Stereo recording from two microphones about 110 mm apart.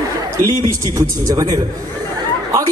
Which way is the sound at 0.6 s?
30° right (ahead or behind).